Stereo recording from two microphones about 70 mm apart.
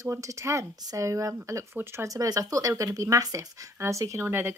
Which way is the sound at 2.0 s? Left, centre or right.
Right.